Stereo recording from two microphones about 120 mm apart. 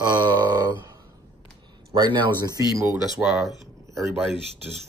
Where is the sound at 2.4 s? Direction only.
30° right (ahead or behind).